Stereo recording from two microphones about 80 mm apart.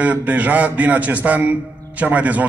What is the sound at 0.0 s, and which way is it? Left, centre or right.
A man's voice, centre.